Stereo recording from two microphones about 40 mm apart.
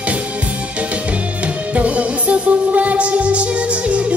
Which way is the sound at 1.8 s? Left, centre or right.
Right.